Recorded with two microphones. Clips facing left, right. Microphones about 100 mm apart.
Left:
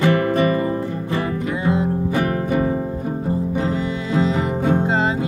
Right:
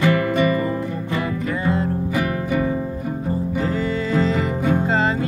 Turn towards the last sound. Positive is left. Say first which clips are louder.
# even
turn(degrees=15)  # may be behind; listen again after turning